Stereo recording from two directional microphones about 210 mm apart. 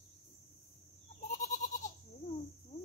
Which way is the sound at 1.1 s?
35° left (ahead or behind).